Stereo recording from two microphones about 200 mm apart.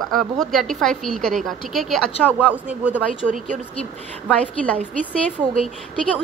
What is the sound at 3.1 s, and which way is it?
Speech, 40° right (ahead or behind).